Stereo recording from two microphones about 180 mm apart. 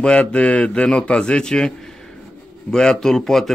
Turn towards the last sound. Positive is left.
turn(degrees=0)  # may be behind; listen again after turning